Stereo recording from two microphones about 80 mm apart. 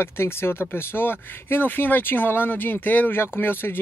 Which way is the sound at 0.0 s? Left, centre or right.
Left.